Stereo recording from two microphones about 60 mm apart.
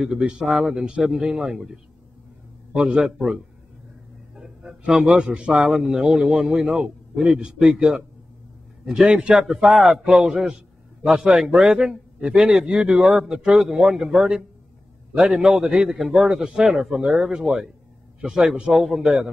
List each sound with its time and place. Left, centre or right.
0.0 s a man's voice: centre
4.4 s a sound: centre
5.0 s a man's voice: centre
5.7 s a man's voice: centre
9.0 s a man's voice: centre
18.7 s a man's voice: centre